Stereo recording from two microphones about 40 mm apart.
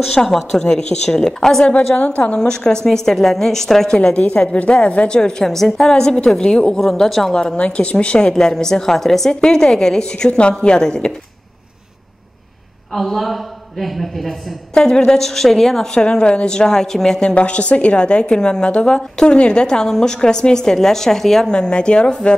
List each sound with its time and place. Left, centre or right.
0.1 s a woman's voice: centre
1.7 s a woman's voice: left
2.3 s a woman's voice: centre
3.9 s a woman's voice: left
4.2 s a woman's voice: left
6.8 s a woman's voice: centre
7.3 s a woman's voice: left; by 9.4 s centre
9.4 s a woman's voice: centre
12.9 s a man's voice: centre
14.7 s a woman's voice: left
15.9 s a woman's voice: left
17.2 s a woman's voice: left; by 21.5 s centre
21.5 s a woman's voice: left